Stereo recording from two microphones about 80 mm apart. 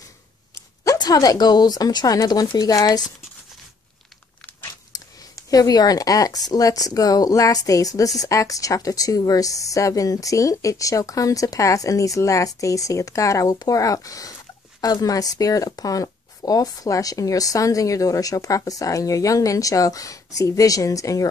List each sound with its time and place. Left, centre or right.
0.9 s speech: left
4.9 s speech: left